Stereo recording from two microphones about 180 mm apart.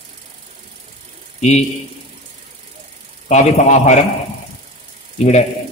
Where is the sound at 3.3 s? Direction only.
40° left (ahead or behind).